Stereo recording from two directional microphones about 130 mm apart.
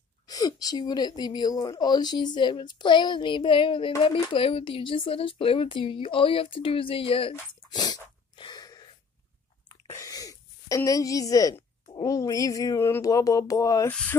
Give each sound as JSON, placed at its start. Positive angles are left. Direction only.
{"t": 0.3, "sound": "speech", "side_deg": 30}
{"t": 7.7, "sound": "sneeze", "side_deg": 30}
{"t": 9.9, "sound": "a sound", "side_deg": 25}
{"t": 11.9, "sound": "speech", "side_deg": 25}